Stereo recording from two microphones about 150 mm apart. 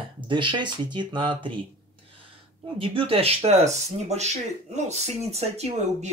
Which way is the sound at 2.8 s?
40° right (ahead or behind).